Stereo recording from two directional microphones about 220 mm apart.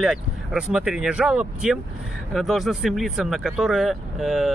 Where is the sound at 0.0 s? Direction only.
5° right (ahead or behind).